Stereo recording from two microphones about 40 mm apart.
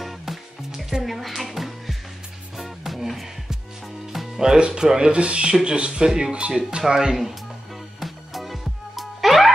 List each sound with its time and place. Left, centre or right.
0.0 s music: centre
4.4 s speech: centre
5.1 s speech: right
6.3 s speech: right
8.0 s music: centre